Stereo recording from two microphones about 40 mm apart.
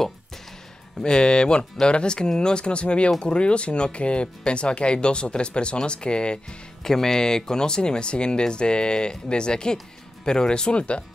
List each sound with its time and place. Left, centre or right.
1.0 s speech: left
6.8 s speech: centre; by 11.0 s left